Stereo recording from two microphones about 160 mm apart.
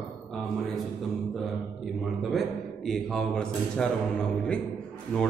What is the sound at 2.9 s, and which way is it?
Speech, 5° left (ahead or behind).